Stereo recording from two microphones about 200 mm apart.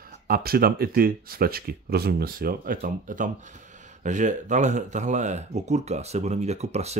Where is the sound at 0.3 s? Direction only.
50° right (ahead or behind).